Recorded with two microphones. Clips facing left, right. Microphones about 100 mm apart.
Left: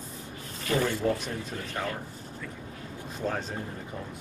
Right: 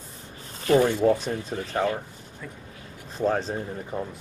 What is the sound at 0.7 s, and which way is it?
Speech, 20° right (ahead or behind).